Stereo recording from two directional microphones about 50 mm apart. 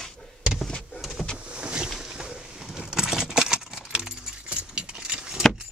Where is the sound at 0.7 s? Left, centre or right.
Centre.